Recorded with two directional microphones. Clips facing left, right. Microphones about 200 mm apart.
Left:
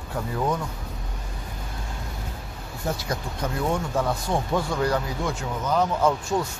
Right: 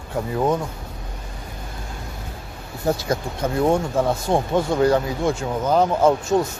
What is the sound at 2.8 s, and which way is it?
Speech, 35° right (ahead or behind).